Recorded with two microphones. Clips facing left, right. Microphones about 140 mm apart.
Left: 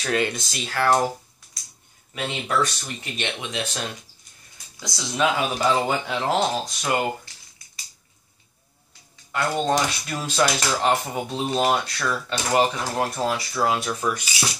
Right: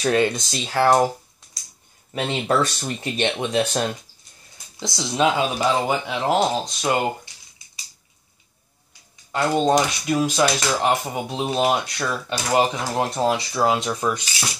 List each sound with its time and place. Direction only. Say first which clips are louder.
0.0 s speech: right 5 dB; 25° right (ahead or behind)
2.1 s speech: right 4 dB; 30° right (ahead or behind)
4.7 s speech: right 4 dB; 25° right (ahead or behind)
9.3 s speech: right 4 dB; 25° right (ahead or behind)